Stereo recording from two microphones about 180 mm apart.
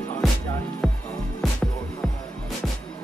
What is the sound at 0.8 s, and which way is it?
Music, centre (ahead or behind).